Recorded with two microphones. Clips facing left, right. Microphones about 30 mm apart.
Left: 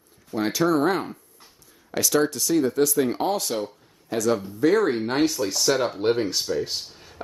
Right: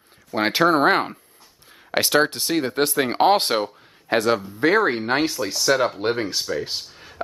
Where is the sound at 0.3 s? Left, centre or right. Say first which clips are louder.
Right 4 dB; right.